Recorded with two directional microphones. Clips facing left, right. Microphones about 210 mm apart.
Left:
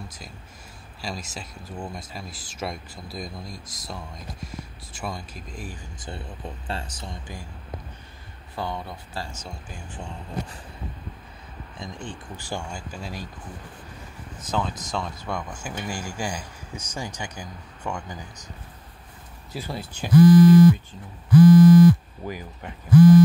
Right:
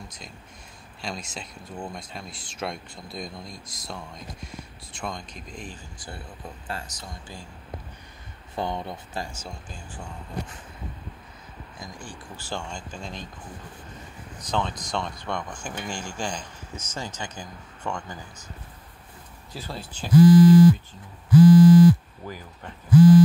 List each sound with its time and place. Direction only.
1.0 s speech: centre (ahead or behind)
5.9 s speech: 20° left (ahead or behind)
8.5 s speech: 20° right (ahead or behind)
11.8 s speech: 25° left (ahead or behind); by 13.3 s 5° left (ahead or behind)
14.4 s speech: 5° left (ahead or behind)
19.5 s speech: 10° left (ahead or behind)
20.1 s speech: 10° right (ahead or behind)
22.2 s speech: 15° left (ahead or behind)
22.8 s speech: 10° right (ahead or behind)